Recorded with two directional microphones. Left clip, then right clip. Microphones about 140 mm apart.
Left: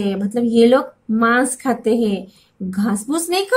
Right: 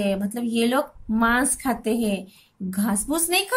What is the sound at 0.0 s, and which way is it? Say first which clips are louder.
Speech: left 5 dB; 35° right (ahead or behind).